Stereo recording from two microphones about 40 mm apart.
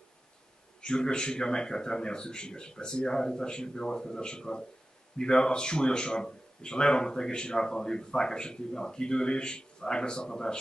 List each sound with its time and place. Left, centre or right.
0.7 s a man's voice: left